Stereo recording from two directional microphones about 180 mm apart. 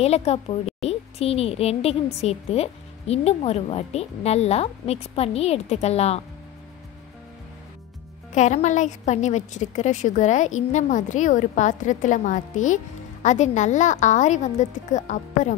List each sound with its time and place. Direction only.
0.0 s a woman's voice: 35° left (ahead or behind)
8.4 s a woman's voice: 40° left (ahead or behind)